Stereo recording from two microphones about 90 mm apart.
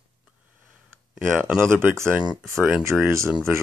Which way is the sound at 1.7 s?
25° right (ahead or behind).